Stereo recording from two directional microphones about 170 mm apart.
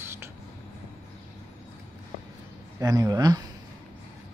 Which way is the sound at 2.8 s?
25° right (ahead or behind).